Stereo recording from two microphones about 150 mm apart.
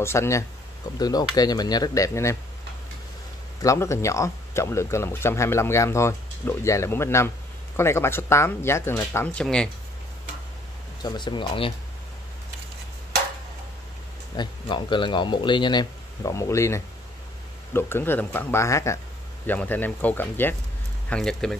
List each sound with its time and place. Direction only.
0.0 s speech: 15° left (ahead or behind)
3.6 s speech: 20° left (ahead or behind)
11.0 s speech: 30° left (ahead or behind)
14.3 s speech: 30° left (ahead or behind); by 21.5 s 5° left (ahead or behind)